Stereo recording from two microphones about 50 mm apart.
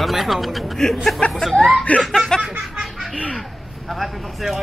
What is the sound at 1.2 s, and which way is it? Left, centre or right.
A man's voice, left.